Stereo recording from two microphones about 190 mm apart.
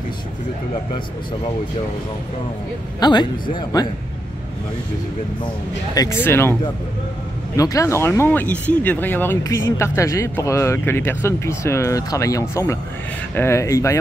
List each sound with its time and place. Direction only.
3.0 s speech: 25° left (ahead or behind)
5.9 s speech: 15° left (ahead or behind)
7.5 s speech: 15° left (ahead or behind)